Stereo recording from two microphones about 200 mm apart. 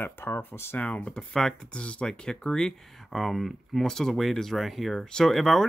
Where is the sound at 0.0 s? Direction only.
10° left (ahead or behind).